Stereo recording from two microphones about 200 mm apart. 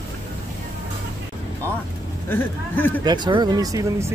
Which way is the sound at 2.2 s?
10° left (ahead or behind).